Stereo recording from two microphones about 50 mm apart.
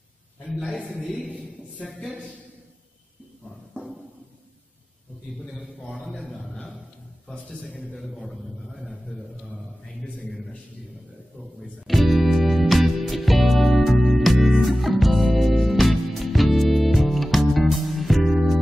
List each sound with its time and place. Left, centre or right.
1.1 s a man's voice: centre
6.0 s a sound: centre
7.9 s a man's voice: centre
11.9 s music: centre